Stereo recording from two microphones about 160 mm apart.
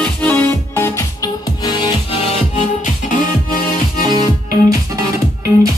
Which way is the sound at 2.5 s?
55° left (ahead or behind).